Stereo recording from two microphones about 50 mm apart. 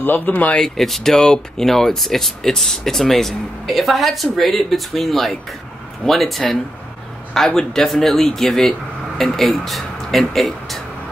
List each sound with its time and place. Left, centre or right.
0.0 s speech: left
0.6 s speech: centre